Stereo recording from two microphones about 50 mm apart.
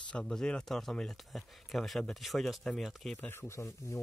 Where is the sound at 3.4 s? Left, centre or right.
Left.